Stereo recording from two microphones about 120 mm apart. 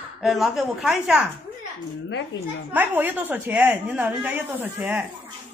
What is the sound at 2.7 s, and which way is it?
A woman's voice, 15° right (ahead or behind).